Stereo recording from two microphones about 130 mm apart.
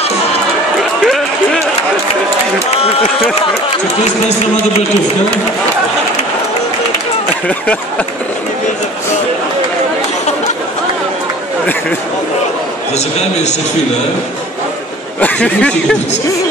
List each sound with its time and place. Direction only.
1.0 s run: centre (ahead or behind)
2.7 s speech: 55° left (ahead or behind)
12.9 s a man's voice: 60° left (ahead or behind)
15.1 s speech: 10° left (ahead or behind)